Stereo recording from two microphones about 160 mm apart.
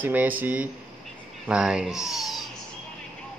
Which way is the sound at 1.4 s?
5° right (ahead or behind).